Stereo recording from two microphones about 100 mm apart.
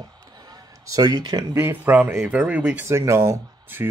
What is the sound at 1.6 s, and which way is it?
Speech, 20° right (ahead or behind).